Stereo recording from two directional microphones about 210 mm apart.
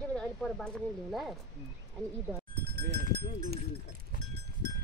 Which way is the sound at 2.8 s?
55° right (ahead or behind).